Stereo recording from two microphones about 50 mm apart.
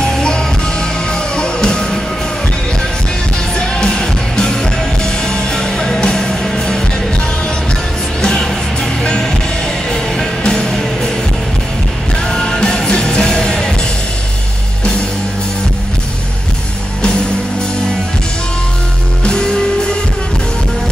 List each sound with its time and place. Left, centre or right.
0.0 s music: centre
3.5 s music: centre
8.2 s music: centre
12.3 s music: centre
19.2 s music: centre